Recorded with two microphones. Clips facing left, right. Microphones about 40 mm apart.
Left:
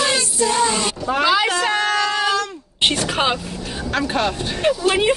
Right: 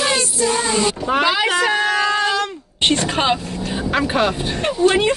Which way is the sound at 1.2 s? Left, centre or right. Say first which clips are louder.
Left 2 dB; centre.